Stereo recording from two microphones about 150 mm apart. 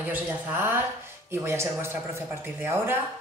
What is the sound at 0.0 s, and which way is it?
Speech, 15° right (ahead or behind).